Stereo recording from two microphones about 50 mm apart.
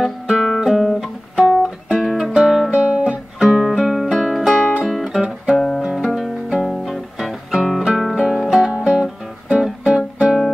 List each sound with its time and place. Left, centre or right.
0.0 s music: centre
2.7 s guitar: right
3.1 s music: centre
4.8 s guitar: centre
5.5 s music: centre
5.8 s music: centre
6.6 s music: centre
8.5 s music: centre